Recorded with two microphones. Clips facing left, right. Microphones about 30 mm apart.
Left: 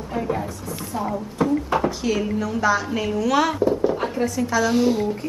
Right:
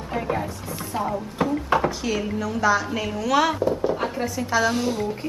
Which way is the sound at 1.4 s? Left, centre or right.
Right.